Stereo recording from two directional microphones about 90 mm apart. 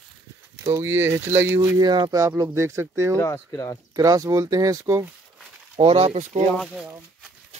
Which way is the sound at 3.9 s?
40° right (ahead or behind).